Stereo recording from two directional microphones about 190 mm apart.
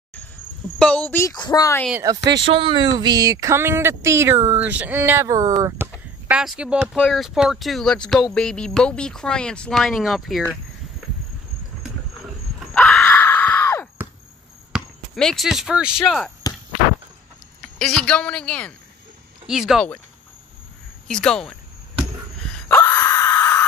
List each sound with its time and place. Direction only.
1.1 s speech: 20° left (ahead or behind)
1.9 s speech: 10° right (ahead or behind)
2.4 s speech: 30° right (ahead or behind)
6.2 s speech: 5° right (ahead or behind)
12.7 s screaming: 5° left (ahead or behind)
14.7 s speech: centre (ahead or behind)
17.6 s a woman's voice: 5° left (ahead or behind)
21.1 s cricket: 5° left (ahead or behind)
22.5 s groan: 10° left (ahead or behind)